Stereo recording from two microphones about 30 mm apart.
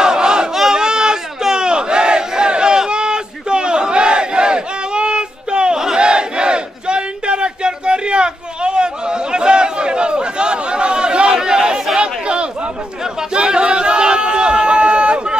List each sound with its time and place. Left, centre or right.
0.0 s battle cry: right
0.7 s a sound: right
1.5 s battle cry: right
11.3 s chatter: right
12.0 s battle cry: right
13.3 s a sound: right